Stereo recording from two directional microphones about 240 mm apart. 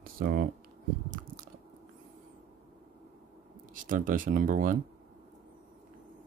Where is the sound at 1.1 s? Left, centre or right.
Right.